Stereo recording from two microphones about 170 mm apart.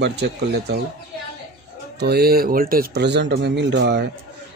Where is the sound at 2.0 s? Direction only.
65° right (ahead or behind).